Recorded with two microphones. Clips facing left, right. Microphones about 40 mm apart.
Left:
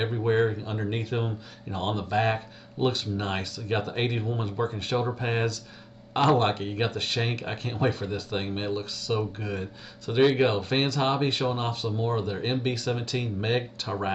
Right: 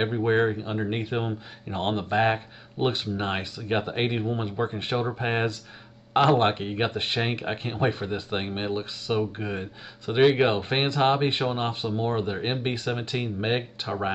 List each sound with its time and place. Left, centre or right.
0.0 s speech: right
1.8 s speech: right; by 14.1 s centre